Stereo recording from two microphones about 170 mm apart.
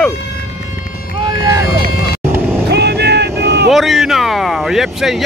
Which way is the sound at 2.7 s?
80° right.